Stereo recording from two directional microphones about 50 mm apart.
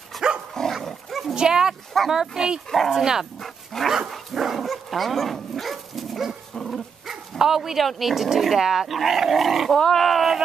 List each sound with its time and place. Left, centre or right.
0.1 s dog: centre
1.3 s speech: centre
2.7 s speech: centre
3.0 s speech: centre
3.3 s dog: centre
6.5 s dog: centre
7.1 s dog: centre
7.8 s speech: centre
9.8 s speech: centre